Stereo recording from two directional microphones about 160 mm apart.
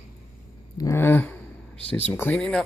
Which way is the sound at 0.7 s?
15° left (ahead or behind).